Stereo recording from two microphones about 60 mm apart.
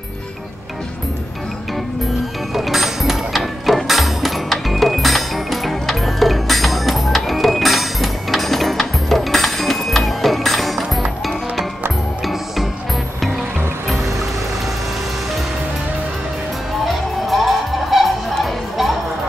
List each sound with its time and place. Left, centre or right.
2.5 s mechanisms: centre
16.8 s music: centre